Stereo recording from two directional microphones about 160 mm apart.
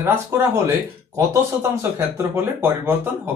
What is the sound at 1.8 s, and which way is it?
Speech, 15° right (ahead or behind).